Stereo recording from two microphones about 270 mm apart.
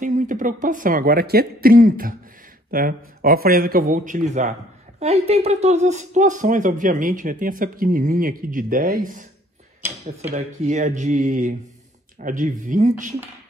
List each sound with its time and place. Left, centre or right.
0.0 s speech: right
9.8 s a sound: centre
10.3 s speech: right